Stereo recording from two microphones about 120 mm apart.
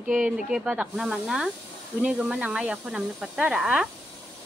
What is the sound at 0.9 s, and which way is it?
Speech, 5° right (ahead or behind).